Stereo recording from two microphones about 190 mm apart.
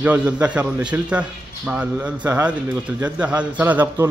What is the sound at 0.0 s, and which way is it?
A man's voice, 5° right (ahead or behind).